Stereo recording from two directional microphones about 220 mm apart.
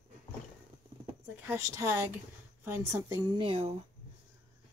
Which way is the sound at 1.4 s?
10° right (ahead or behind).